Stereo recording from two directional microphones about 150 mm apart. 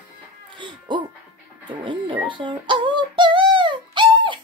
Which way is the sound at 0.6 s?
30° right (ahead or behind).